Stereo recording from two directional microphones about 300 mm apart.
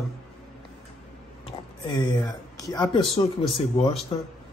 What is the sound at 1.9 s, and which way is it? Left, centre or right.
Speech, centre.